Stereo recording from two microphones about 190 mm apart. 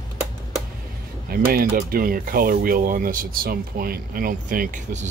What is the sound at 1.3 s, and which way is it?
Speech, 50° right (ahead or behind).